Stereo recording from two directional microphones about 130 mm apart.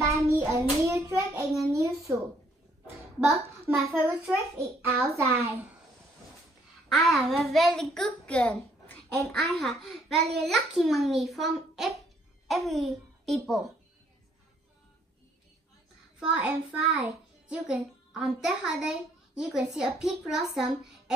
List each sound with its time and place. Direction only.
0.0 s hands: 25° right (ahead or behind)
1.0 s a child's voice: 20° right (ahead or behind)
3.6 s a child's voice: 15° right (ahead or behind)
7.0 s a child's voice: centre (ahead or behind)
16.2 s a child's voice: 10° right (ahead or behind)